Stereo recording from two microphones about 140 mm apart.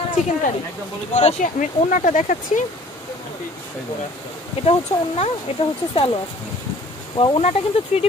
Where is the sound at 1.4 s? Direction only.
65° left (ahead or behind).